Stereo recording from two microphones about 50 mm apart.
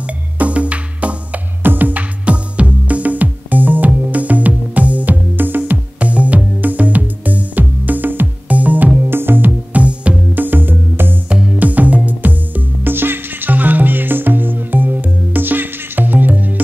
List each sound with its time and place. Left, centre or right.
0.0 s music: right
1.6 s music: right
9.1 s music: right
9.8 s music: right
10.4 s music: right
11.2 s music: right